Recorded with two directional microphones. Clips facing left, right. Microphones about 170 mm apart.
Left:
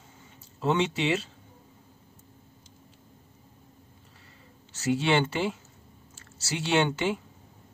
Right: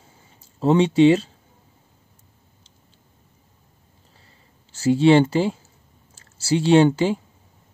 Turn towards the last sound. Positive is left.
turn(degrees=-30)  # may be behind; listen again after turning